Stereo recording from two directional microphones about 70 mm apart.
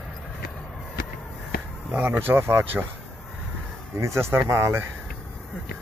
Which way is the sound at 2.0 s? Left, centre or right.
Right.